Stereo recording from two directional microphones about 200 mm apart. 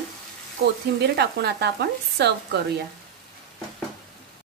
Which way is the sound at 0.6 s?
55° right (ahead or behind).